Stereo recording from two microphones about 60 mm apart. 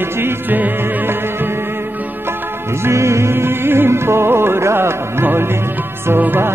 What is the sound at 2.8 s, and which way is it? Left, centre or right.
Music, right.